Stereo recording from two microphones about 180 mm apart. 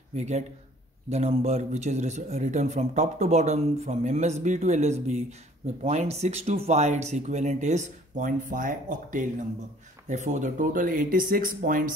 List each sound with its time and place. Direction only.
0.1 s speech: 40° right (ahead or behind)